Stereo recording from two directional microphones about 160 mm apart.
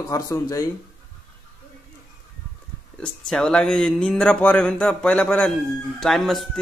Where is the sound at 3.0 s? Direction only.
5° left (ahead or behind).